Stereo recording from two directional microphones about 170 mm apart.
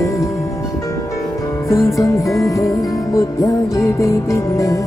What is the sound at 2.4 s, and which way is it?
Music, 20° left (ahead or behind).